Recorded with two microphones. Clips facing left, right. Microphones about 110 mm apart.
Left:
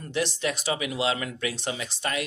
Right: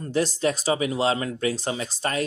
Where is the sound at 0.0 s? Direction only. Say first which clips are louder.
Right 5 dB; 40° right (ahead or behind).